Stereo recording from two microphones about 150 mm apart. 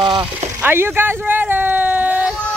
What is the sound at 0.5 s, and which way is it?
Speech, 15° right (ahead or behind).